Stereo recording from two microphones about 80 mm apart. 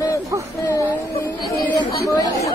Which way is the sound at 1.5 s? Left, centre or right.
Left.